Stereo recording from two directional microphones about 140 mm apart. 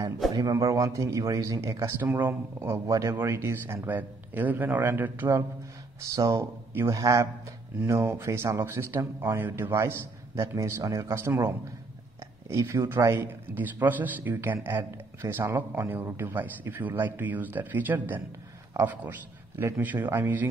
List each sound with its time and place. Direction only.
0.3 s a man's voice: 25° right (ahead or behind)